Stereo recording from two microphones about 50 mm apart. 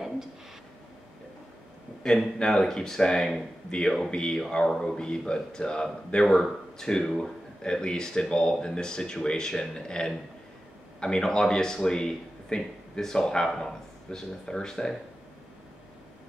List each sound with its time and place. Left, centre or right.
2.0 s speech: centre